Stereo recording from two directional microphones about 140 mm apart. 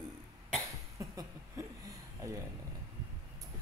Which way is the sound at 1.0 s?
25° right (ahead or behind).